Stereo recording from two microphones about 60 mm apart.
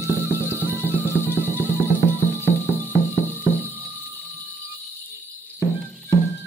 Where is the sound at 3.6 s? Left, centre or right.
Left.